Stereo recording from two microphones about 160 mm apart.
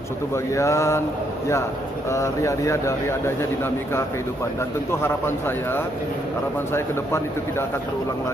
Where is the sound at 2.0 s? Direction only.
20° left (ahead or behind).